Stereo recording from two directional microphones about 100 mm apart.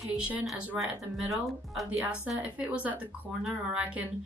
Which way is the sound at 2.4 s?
15° right (ahead or behind).